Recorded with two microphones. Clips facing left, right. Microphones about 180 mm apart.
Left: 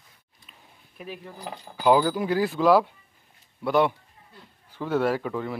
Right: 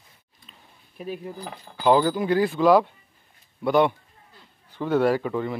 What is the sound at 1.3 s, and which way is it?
Speech, 15° left (ahead or behind).